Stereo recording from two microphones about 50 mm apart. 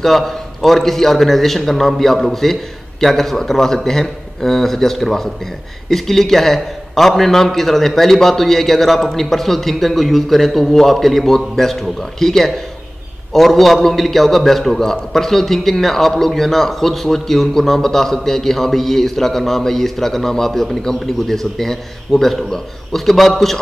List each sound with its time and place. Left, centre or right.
0.0 s a man's voice: centre